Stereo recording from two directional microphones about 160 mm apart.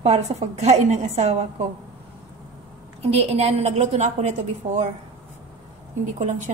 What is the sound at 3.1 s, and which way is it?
A woman's voice, 40° right (ahead or behind).